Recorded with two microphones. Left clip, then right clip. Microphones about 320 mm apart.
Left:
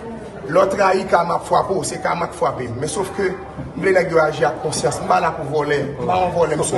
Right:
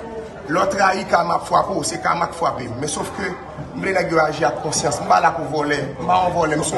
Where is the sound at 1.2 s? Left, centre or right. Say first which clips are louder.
Even; centre.